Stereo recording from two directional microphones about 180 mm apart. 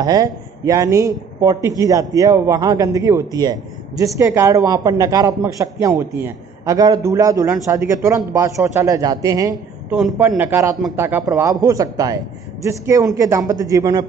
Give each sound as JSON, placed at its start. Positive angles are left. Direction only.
{"t": 0.0, "sound": "a man's voice", "side_deg": -20}